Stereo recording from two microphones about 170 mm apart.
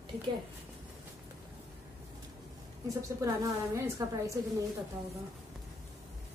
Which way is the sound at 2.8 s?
20° right (ahead or behind).